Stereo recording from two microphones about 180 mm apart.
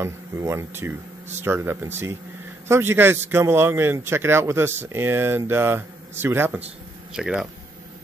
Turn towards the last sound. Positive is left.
turn(degrees=-5)  # may be behind; listen again after turning